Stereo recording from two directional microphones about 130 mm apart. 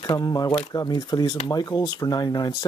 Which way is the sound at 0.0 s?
30° left (ahead or behind).